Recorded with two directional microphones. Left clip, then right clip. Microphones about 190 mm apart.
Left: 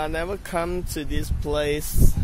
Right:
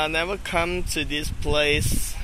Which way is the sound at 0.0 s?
15° left (ahead or behind).